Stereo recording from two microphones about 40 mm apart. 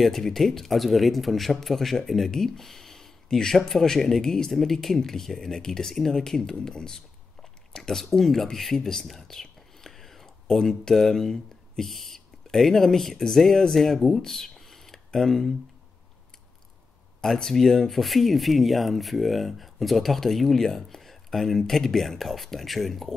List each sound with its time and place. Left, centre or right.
0.0 s speech: centre
7.7 s a sound: centre
8.0 s speech: centre
17.2 s speech: centre